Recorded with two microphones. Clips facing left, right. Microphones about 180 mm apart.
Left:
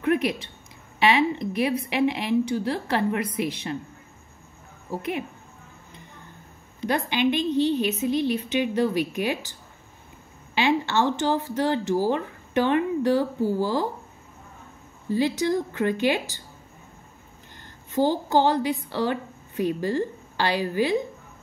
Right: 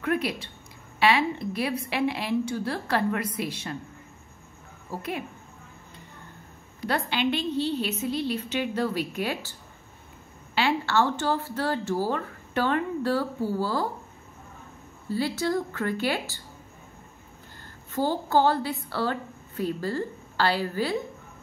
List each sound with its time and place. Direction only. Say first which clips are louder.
0.0 s a sound: left 4 dB; 20° left (ahead or behind)
0.9 s a woman's voice: left 2 dB; 20° left (ahead or behind)
4.9 s speech: left 4 dB; 20° left (ahead or behind)
6.8 s a woman's voice: left 3 dB; 15° left (ahead or behind)
15.0 s a woman's voice: left 4 dB; 20° left (ahead or behind)
17.9 s a woman's voice: left 3 dB; 15° left (ahead or behind)